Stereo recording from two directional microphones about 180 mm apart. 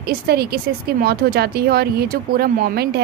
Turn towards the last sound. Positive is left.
turn(degrees=-60)  # may be behind; listen again after turning